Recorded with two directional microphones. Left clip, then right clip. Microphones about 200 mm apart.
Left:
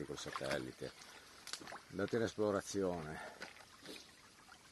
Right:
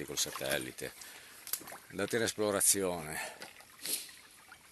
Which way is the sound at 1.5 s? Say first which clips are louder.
Right 3 dB; 55° right (ahead or behind).